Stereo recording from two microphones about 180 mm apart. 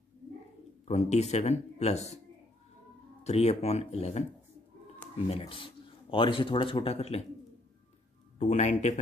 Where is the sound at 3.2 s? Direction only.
35° left (ahead or behind).